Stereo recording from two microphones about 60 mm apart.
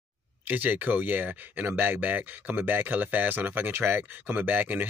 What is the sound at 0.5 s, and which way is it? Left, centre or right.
Speech, right.